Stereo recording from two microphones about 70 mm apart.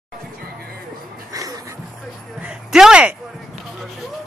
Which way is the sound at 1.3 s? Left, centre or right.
Right.